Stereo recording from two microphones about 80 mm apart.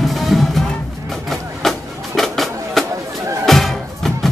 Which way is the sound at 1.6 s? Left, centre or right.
Centre.